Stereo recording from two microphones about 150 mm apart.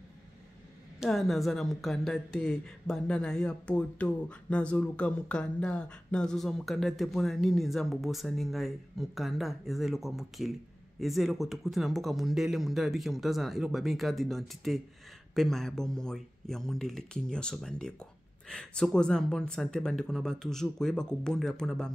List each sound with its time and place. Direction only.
0.9 s speech: centre (ahead or behind)